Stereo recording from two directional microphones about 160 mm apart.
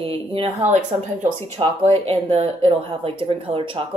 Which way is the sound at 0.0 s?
35° right (ahead or behind).